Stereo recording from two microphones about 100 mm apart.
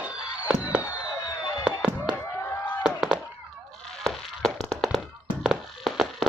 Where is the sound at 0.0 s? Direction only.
15° right (ahead or behind).